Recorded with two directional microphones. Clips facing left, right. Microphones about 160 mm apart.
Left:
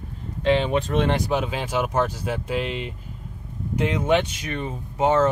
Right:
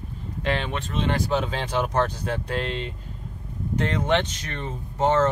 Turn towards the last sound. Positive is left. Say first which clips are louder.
# left 1 dB
turn(degrees=10)  # may be behind; listen again after turning